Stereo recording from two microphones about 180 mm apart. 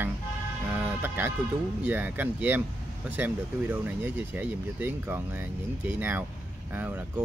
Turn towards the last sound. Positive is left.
turn(degrees=-10)  # may be behind; listen again after turning